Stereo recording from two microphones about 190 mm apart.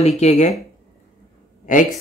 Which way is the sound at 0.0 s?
35° left (ahead or behind).